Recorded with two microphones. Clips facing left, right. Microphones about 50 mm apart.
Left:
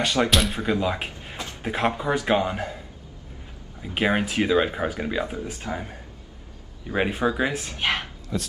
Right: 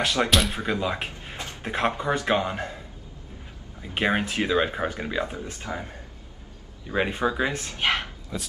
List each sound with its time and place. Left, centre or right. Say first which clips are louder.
0.0 s speech: left 1 dB; centre
3.8 s speech: left 1 dB; centre
5.5 s speech: left 2 dB; left
6.9 s speech: left 1 dB; centre
7.9 s a sound: left 1 dB; centre